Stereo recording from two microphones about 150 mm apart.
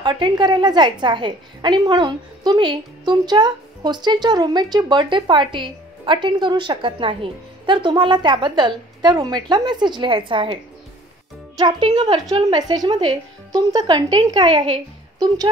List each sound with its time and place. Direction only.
0.0 s a woman's voice: 30° right (ahead or behind)